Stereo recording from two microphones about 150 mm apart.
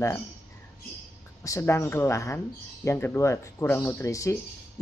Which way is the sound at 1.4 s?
20° left (ahead or behind).